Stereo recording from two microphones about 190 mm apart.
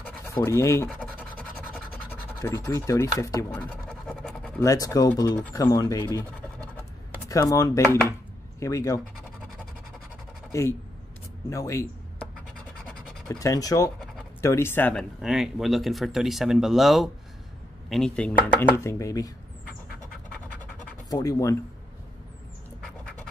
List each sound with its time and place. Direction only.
0.0 s scratch: 15° left (ahead or behind)
1.7 s speech: 10° left (ahead or behind)
3.8 s scratch: centre (ahead or behind)
4.6 s speech: 15° left (ahead or behind)
7.2 s speech: 20° left (ahead or behind)
11.5 s a sound: 15° left (ahead or behind)
13.4 s speech: 15° left (ahead or behind)
21.1 s speech: 20° left (ahead or behind)